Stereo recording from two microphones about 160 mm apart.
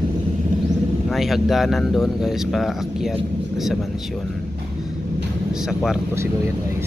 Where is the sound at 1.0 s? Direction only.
Centre (ahead or behind).